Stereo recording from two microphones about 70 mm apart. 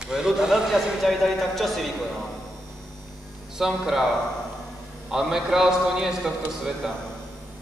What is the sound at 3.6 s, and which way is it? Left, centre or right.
Speech, centre.